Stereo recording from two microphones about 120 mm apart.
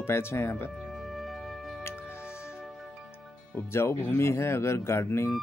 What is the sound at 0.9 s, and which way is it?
Music, centre (ahead or behind).